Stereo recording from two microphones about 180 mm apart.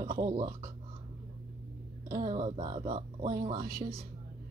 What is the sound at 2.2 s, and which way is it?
Speech, 30° right (ahead or behind).